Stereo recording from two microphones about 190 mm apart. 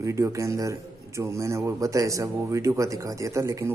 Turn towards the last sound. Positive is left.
turn(degrees=-15)  # may be behind; listen again after turning